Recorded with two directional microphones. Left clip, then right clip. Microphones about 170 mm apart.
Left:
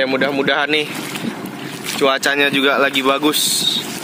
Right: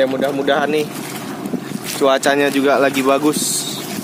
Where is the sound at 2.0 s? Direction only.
15° right (ahead or behind).